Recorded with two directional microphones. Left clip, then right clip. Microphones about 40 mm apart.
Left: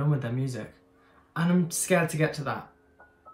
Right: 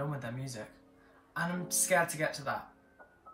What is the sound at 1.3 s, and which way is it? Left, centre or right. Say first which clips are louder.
Speech: left 5 dB; left.